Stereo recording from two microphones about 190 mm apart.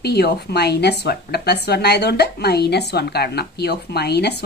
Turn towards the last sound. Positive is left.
turn(degrees=60)  # may be behind; listen again after turning